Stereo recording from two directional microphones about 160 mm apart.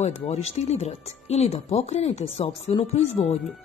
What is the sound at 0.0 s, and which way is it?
Speech, 40° left (ahead or behind).